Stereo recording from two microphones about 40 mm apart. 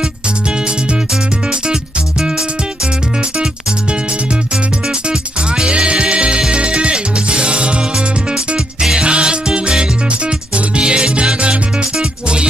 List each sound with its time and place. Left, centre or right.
5.7 s music: right
9.0 s music: right